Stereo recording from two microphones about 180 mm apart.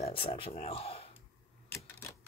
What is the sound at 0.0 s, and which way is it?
Speech, 30° left (ahead or behind).